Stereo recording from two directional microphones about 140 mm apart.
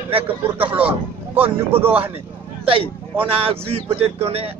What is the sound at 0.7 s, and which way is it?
A man's voice, 10° right (ahead or behind).